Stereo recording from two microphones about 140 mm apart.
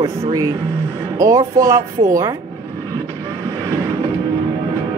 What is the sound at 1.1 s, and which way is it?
A woman's voice, 25° right (ahead or behind).